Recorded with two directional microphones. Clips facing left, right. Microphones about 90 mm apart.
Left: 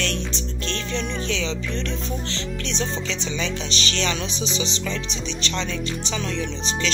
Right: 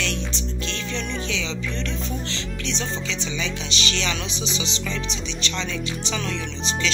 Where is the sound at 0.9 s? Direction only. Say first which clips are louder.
Left 2 dB; 35° left (ahead or behind).